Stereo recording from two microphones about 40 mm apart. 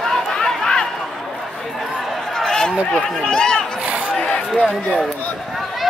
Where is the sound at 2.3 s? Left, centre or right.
Centre.